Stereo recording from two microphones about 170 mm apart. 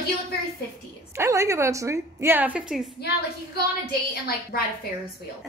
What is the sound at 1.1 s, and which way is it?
A woman's voice, 15° right (ahead or behind).